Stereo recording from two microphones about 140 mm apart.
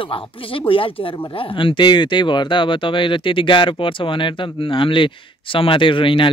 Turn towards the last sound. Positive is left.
turn(degrees=40)  # may be behind; listen again after turning